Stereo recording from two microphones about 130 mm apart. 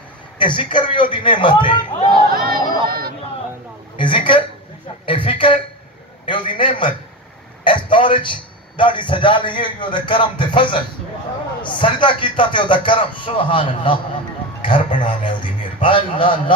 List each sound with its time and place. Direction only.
0.4 s speech: 40° left (ahead or behind)
2.2 s a sound: 90° right
3.9 s a man's voice: 40° left (ahead or behind)
7.6 s a sound: 40° left (ahead or behind)
8.7 s speech: 40° left (ahead or behind)
15.0 s speech: 40° left (ahead or behind)